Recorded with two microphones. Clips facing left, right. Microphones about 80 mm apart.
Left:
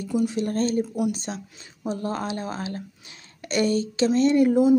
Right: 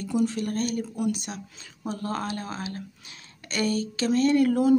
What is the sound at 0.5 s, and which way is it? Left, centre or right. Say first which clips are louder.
Speech: left 4 dB; left.